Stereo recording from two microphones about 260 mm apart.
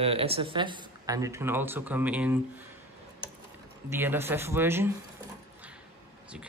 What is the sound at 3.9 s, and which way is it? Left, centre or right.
Speech, centre.